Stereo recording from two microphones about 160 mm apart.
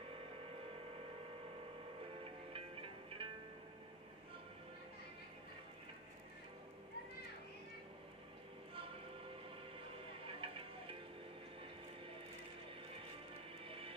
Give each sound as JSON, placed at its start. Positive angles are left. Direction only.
{"t": 2.5, "sound": "music", "side_deg": -35}
{"t": 10.4, "sound": "music", "side_deg": -35}
{"t": 13.7, "sound": "music", "side_deg": -35}